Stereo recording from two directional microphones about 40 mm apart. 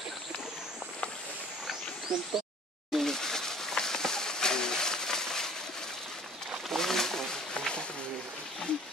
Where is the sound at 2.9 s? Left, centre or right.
Centre.